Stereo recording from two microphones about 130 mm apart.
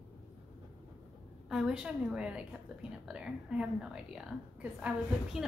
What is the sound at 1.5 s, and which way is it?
A woman's voice, 5° right (ahead or behind).